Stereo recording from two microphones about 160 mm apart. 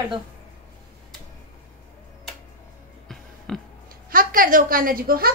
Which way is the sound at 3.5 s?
5° left (ahead or behind).